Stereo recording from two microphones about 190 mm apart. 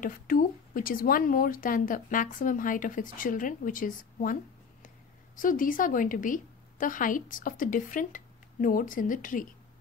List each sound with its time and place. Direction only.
0.0 s speech: 45° left (ahead or behind)